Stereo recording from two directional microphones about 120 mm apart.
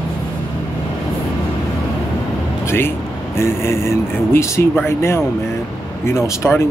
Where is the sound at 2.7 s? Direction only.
20° left (ahead or behind).